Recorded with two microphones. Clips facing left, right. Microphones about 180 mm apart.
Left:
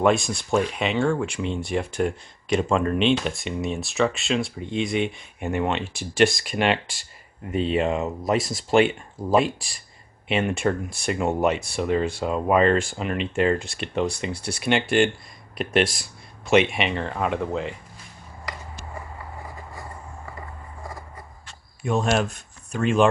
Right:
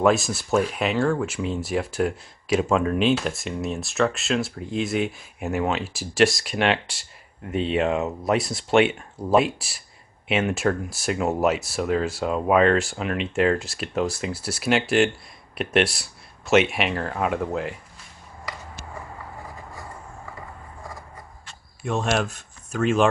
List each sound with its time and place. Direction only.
0.0 s speech: centre (ahead or behind)
21.8 s speech: centre (ahead or behind)